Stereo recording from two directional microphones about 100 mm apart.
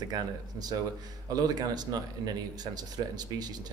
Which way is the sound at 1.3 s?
40° right (ahead or behind).